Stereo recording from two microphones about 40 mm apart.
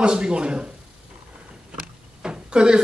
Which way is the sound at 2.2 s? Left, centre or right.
Right.